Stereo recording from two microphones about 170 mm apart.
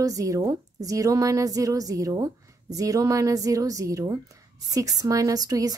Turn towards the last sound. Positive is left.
turn(degrees=-20)  # may be behind; listen again after turning